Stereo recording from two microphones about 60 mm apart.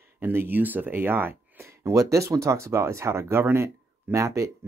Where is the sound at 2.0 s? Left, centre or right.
Right.